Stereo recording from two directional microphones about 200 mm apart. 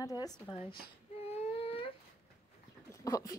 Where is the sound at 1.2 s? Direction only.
30° left (ahead or behind).